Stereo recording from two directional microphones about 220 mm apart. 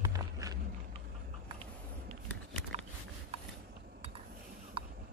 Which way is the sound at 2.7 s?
30° right (ahead or behind).